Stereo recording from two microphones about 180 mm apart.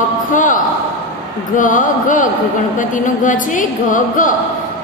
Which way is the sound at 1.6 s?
45° left (ahead or behind).